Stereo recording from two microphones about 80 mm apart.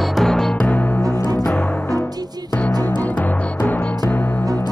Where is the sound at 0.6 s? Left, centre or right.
Left.